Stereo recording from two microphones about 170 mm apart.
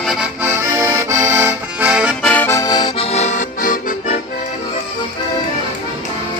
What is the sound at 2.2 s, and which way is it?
Accordion, 10° left (ahead or behind).